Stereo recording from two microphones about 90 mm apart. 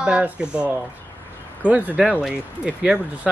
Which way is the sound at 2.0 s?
5° right (ahead or behind).